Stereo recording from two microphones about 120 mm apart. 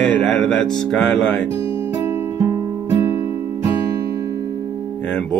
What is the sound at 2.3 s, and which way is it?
Music, 25° right (ahead or behind).